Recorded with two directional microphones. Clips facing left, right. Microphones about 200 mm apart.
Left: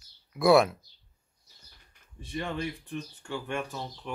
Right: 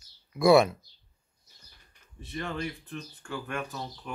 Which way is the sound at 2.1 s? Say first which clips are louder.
Left 1 dB; 15° left (ahead or behind).